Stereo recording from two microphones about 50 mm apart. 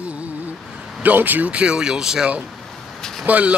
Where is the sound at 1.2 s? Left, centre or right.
Right; by 2.3 s centre.